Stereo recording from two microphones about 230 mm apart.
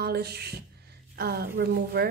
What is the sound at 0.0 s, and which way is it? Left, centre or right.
A woman's voice, right.